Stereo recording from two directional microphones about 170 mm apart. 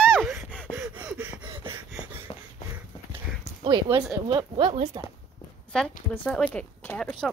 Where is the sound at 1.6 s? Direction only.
10° right (ahead or behind).